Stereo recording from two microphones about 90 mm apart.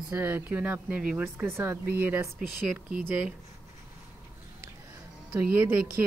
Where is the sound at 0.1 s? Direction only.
25° right (ahead or behind).